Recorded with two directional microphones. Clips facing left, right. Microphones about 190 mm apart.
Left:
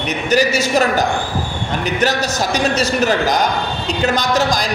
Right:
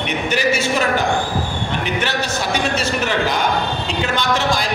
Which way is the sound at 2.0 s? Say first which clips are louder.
Left 4 dB; 40° left (ahead or behind).